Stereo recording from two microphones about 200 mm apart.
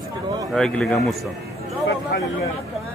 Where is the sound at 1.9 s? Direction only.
60° left (ahead or behind).